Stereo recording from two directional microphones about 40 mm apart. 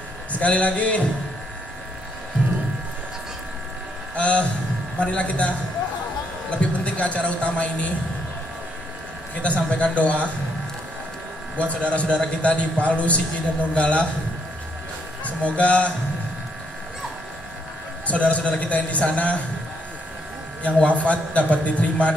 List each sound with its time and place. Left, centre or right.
0.3 s a man's voice: left
4.1 s hum: left
4.9 s a man's voice: left
9.4 s a man's voice: left
11.5 s a man's voice: left
15.2 s speech: left
18.0 s a man's voice: left
21.0 s a man's voice: left